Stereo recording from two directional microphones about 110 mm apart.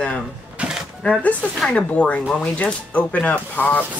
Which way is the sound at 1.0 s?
10° left (ahead or behind).